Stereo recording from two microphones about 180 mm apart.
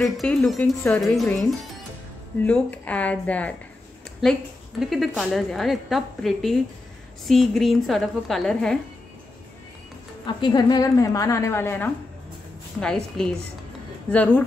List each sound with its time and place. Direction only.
0.0 s a woman's voice: 5° left (ahead or behind)
2.4 s a woman's voice: 10° left (ahead or behind)
10.2 s a woman's voice: 25° left (ahead or behind); by 14.4 s 10° left (ahead or behind)